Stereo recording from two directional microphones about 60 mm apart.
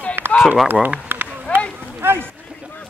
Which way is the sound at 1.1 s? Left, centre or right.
Right.